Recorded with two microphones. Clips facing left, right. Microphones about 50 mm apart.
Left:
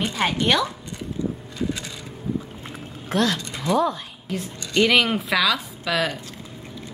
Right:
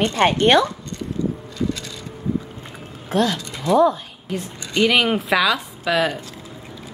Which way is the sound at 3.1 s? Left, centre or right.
Centre.